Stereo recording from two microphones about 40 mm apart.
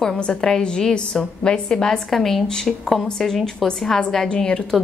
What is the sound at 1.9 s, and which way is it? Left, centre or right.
Speech, centre.